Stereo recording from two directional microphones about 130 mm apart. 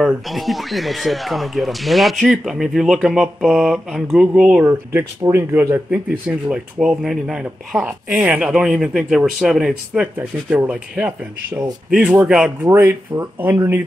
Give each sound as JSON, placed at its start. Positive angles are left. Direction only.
{"t": 0.0, "sound": "speech", "side_deg": 0}
{"t": 4.9, "sound": "speech", "side_deg": -20}
{"t": 10.1, "sound": "speech", "side_deg": -15}
{"t": 12.6, "sound": "speech", "side_deg": -20}